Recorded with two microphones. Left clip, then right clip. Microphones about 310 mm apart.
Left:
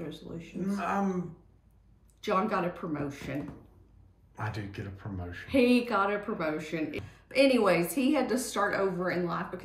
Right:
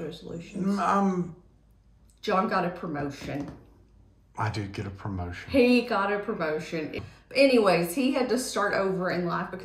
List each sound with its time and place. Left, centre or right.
0.6 s speech: centre
2.2 s speech: centre
4.4 s speech: centre
5.5 s speech: centre